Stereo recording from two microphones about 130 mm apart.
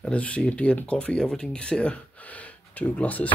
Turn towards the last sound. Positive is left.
turn(degrees=10)  # may be behind; listen again after turning